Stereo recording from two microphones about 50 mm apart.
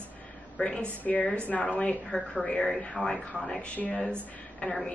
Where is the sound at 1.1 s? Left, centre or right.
Centre.